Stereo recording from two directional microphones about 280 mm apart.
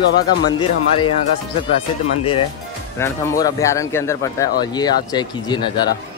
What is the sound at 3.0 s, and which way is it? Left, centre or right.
A man's voice, centre.